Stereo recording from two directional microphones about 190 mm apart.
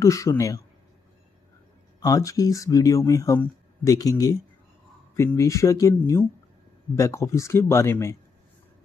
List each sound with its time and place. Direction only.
0.0 s speech: 15° left (ahead or behind)
2.0 s speech: 20° left (ahead or behind)